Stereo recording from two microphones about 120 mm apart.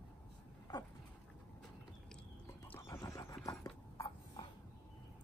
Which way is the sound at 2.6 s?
15° left (ahead or behind).